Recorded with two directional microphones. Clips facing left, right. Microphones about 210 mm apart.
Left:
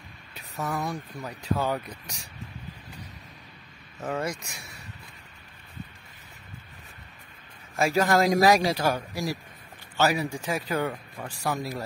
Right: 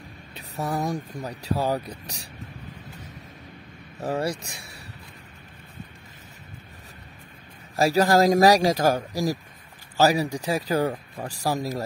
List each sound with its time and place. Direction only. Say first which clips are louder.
0.3 s speech: right 3 dB; 35° right (ahead or behind)
4.0 s speech: right 4 dB; 35° right (ahead or behind)
7.7 s speech: right 3 dB; 35° right (ahead or behind)